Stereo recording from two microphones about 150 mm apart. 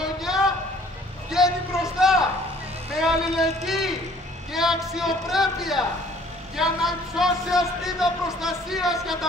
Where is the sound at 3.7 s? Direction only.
Centre (ahead or behind).